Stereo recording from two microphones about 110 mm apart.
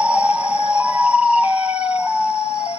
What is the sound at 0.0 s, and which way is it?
Music, 10° right (ahead or behind).